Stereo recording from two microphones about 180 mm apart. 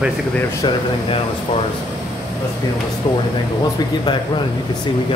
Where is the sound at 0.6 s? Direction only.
25° left (ahead or behind).